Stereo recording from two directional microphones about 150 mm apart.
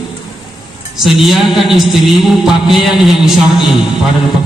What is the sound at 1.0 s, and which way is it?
Speech, centre (ahead or behind).